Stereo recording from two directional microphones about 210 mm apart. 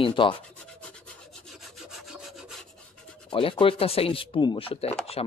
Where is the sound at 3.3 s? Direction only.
25° left (ahead or behind).